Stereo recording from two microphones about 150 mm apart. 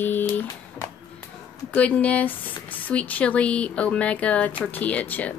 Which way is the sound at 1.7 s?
10° left (ahead or behind).